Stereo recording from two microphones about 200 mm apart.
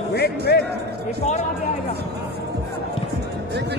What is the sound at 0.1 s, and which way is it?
Music, 55° left (ahead or behind).